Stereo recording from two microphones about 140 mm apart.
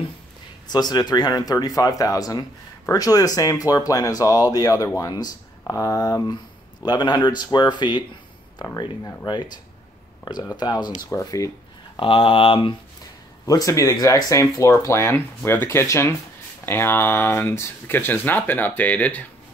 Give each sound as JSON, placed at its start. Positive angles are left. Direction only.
{"t": 0.7, "sound": "speech", "side_deg": 30}
{"t": 12.0, "sound": "speech", "side_deg": 40}
{"t": 13.5, "sound": "speech", "side_deg": 25}